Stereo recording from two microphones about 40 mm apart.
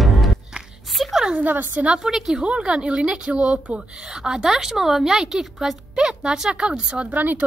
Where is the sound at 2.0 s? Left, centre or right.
Centre.